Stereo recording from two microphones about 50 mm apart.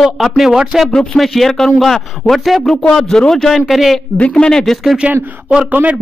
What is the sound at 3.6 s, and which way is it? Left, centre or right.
Speech, centre.